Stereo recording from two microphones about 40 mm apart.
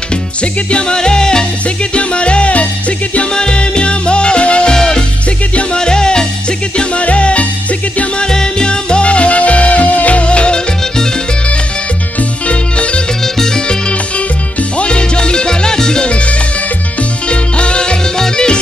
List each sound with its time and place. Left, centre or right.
0.4 s music: left
3.3 s music: left
4.7 s music: centre
6.8 s music: left
8.2 s music: centre
12.4 s music: left
14.8 s music: left
17.3 s music: left